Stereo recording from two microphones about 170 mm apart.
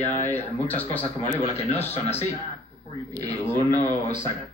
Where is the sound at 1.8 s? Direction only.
10° left (ahead or behind).